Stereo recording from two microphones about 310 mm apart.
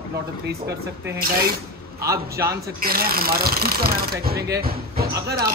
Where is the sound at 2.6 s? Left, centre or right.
Right.